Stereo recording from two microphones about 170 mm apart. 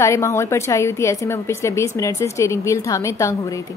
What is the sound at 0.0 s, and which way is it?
A woman's voice, 15° left (ahead or behind).